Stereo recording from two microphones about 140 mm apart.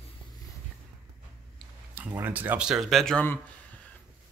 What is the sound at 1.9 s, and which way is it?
Speech, 15° right (ahead or behind).